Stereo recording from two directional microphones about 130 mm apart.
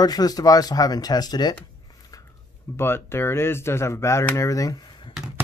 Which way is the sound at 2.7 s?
20° left (ahead or behind).